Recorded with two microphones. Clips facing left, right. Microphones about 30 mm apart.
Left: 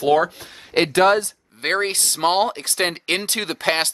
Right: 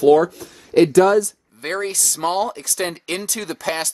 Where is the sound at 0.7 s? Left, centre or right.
Left.